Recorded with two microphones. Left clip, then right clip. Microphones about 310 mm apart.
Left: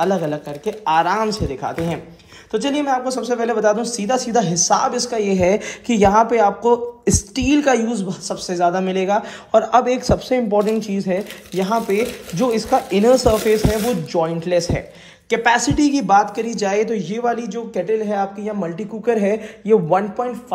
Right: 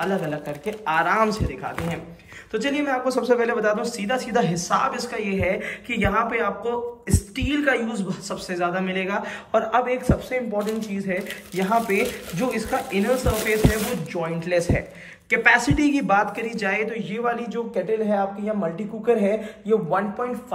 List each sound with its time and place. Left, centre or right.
0.0 s speech: centre
10.7 s speech: centre
11.5 s a man's voice: centre; by 20.0 s left